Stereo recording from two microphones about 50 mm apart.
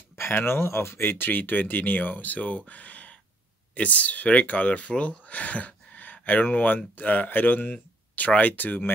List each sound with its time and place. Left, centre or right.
0.1 s speech: left